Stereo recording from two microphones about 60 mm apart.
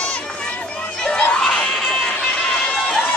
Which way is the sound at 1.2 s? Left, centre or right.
Centre.